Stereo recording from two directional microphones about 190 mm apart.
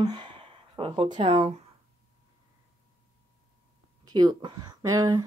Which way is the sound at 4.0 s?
20° right (ahead or behind).